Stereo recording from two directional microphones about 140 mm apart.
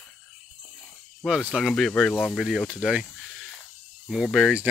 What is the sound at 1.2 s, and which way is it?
Speech, 5° right (ahead or behind).